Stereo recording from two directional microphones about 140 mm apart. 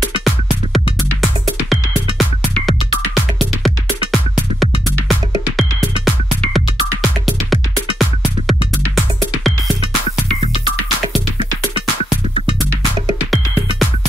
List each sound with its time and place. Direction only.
0.2 s music: centre (ahead or behind)
8.0 s music: centre (ahead or behind)
13.2 s music: centre (ahead or behind)